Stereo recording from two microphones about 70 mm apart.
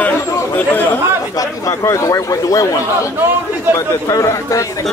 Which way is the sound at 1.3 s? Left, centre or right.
Left.